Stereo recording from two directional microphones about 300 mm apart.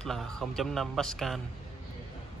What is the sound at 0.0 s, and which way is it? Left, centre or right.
Speech, centre.